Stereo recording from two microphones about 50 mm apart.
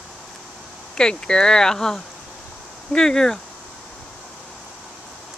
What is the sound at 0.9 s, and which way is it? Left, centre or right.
Speech, centre.